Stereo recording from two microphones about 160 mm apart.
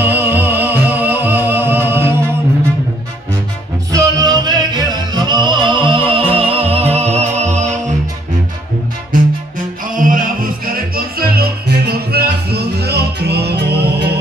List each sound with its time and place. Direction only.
0.0 s music: 10° right (ahead or behind)
3.9 s music: 25° right (ahead or behind); by 7.8 s 45° right (ahead or behind)
9.9 s music: 60° right (ahead or behind); by 14.0 s 90° right